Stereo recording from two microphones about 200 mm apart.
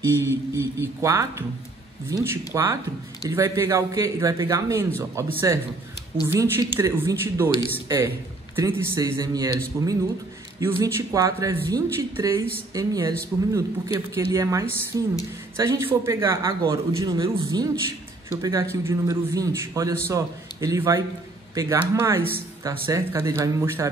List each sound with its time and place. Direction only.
0.1 s a man's voice: 15° right (ahead or behind)